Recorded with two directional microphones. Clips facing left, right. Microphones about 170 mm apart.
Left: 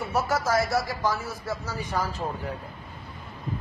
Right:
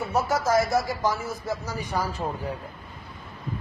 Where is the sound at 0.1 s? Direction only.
20° right (ahead or behind).